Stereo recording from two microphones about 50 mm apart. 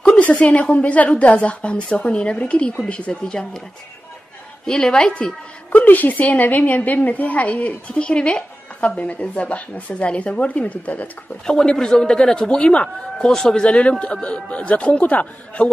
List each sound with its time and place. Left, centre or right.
0.2 s a woman's voice: left; by 3.6 s centre
4.6 s a man's voice: centre
5.7 s a woman's voice: left
11.4 s a man's voice: centre